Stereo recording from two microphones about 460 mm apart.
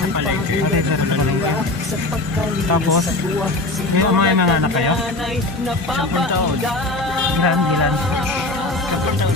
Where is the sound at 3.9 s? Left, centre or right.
Right.